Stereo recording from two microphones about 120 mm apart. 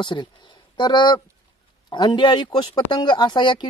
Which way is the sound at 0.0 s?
40° left (ahead or behind).